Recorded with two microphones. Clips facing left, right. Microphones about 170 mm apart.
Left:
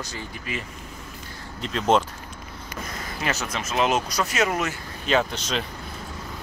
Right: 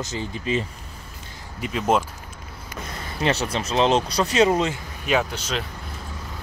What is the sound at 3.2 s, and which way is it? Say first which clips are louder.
Speech: right 6 dB; 30° right (ahead or behind).